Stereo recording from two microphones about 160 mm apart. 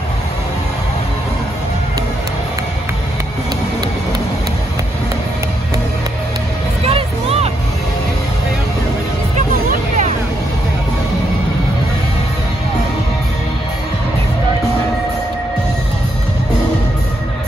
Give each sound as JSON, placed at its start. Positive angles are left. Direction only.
{"t": 6.8, "sound": "vehicle", "side_deg": -35}
{"t": 9.7, "sound": "music", "side_deg": -50}